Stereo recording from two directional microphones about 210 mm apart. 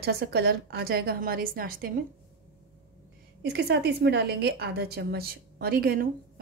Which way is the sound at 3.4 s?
50° right (ahead or behind).